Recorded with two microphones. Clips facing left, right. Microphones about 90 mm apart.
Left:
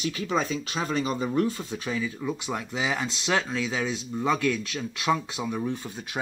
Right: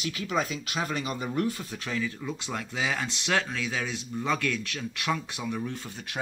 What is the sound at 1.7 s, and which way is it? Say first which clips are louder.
Speech: left 2 dB; 15° left (ahead or behind).